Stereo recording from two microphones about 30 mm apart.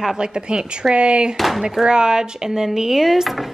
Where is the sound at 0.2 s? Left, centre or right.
Right.